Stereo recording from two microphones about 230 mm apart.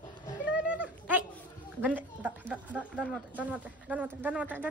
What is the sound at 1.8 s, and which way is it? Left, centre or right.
Speech, centre.